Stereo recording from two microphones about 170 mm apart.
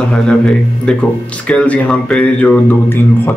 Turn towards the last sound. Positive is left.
turn(degrees=10)  # may be behind; listen again after turning